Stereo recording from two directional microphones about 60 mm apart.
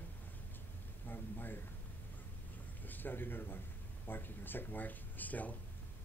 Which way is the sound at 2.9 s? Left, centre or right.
Left.